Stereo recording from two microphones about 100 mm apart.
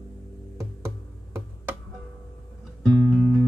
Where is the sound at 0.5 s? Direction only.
25° right (ahead or behind).